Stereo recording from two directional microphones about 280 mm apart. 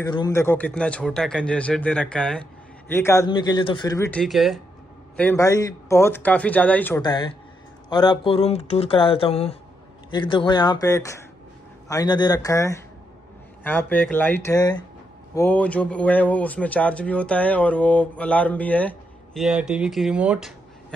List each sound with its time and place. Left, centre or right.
0.0 s speech: centre